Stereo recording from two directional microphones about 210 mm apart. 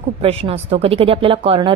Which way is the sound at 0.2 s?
25° right (ahead or behind).